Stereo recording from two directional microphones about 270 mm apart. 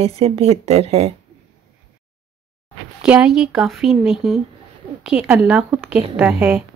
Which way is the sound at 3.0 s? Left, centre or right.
Centre.